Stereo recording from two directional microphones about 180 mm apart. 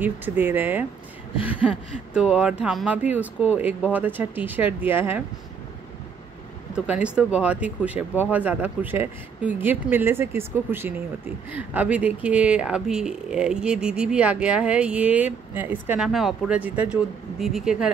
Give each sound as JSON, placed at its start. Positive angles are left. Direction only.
{"t": 0.0, "sound": "speech", "side_deg": -10}
{"t": 6.7, "sound": "speech", "side_deg": -5}